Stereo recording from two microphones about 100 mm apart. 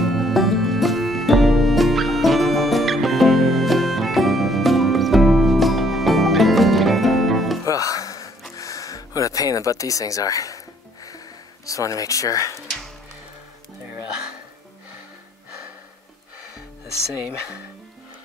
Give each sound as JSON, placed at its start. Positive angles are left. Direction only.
{"t": 0.0, "sound": "music", "side_deg": 0}
{"t": 7.6, "sound": "music", "side_deg": 35}
{"t": 8.5, "sound": "a sound", "side_deg": 35}
{"t": 11.6, "sound": "speech", "side_deg": 35}